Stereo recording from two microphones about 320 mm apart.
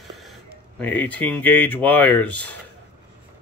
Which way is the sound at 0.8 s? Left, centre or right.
Centre.